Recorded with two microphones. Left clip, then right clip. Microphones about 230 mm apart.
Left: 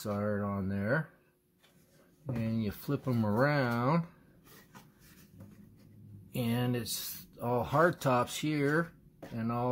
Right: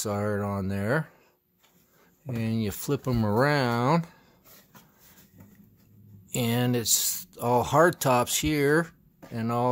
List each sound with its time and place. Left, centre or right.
0.0 s speech: right
2.4 s speech: right
6.3 s speech: right